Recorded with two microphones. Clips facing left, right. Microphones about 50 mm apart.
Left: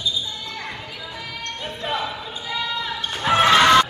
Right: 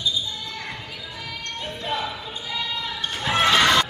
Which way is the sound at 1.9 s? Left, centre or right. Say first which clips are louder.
Left 2 dB; centre.